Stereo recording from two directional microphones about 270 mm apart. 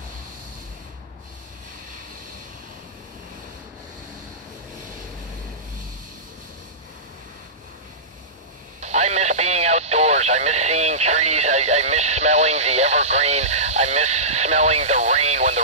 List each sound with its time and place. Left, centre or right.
8.8 s speech: right